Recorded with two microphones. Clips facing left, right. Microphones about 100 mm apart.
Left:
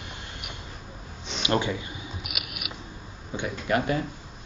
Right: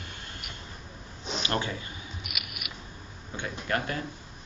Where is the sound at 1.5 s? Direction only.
20° left (ahead or behind).